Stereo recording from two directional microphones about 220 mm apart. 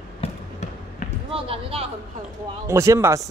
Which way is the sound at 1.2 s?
25° right (ahead or behind).